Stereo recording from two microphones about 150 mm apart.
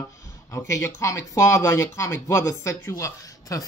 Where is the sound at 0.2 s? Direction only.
20° left (ahead or behind).